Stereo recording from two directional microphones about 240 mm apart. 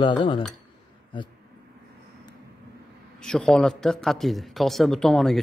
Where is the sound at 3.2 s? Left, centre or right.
Centre.